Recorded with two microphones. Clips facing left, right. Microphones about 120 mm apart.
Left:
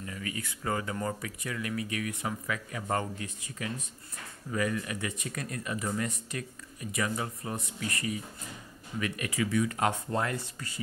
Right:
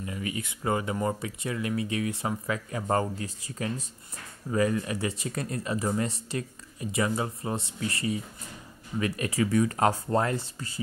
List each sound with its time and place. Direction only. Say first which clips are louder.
0.0 s speech: right 4 dB; 20° right (ahead or behind)